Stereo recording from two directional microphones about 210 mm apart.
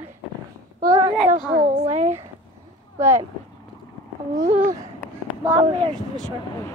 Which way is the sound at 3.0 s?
10° right (ahead or behind).